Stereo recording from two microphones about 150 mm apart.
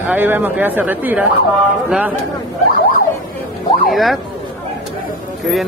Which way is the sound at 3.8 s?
Centre (ahead or behind).